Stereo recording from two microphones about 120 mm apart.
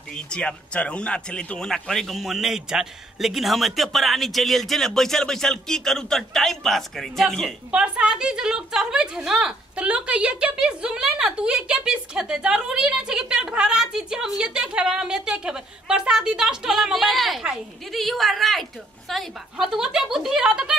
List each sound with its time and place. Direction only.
0.1 s a man's voice: 10° left (ahead or behind)
7.7 s a woman's voice: 10° right (ahead or behind)